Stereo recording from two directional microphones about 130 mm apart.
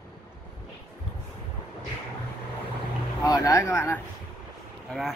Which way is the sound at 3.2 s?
25° left (ahead or behind).